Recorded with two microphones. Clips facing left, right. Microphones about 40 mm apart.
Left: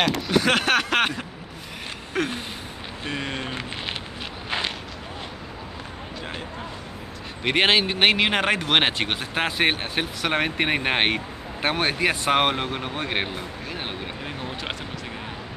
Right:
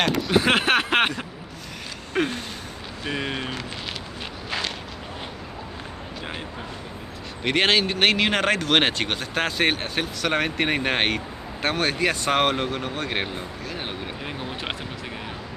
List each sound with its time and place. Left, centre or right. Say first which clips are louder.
0.3 s speech: right 1 dB; centre
2.1 s speech: right 2 dB; centre
4.5 s walk: left 2 dB; left
7.4 s speech: left 1 dB; centre
13.7 s vehicle: even; centre